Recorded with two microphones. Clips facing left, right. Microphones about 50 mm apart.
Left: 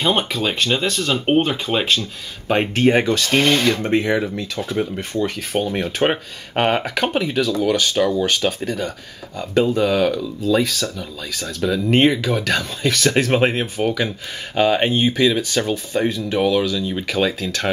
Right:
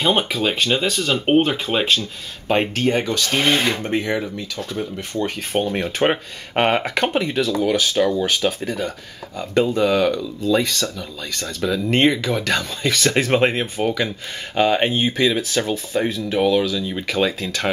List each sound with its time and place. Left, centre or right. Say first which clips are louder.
0.0 s speech: even; centre
2.7 s speech: left 4 dB; centre
3.3 s speech: left 2 dB; centre
3.9 s speech: left 3 dB; centre
4.7 s speech: left 4 dB; left
5.2 s speech: right 1 dB; centre
7.0 s speech: even; centre